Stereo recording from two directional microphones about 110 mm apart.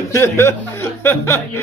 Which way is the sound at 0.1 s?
25° left (ahead or behind).